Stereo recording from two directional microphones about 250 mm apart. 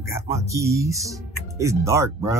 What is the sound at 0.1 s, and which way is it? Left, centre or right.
Speech, centre.